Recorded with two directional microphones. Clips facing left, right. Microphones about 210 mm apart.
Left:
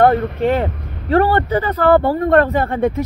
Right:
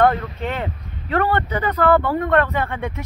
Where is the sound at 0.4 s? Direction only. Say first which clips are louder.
Left 9 dB; 35° left (ahead or behind).